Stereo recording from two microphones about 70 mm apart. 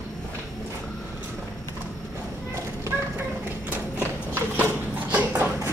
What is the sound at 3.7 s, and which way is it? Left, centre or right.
Clip-clop, right.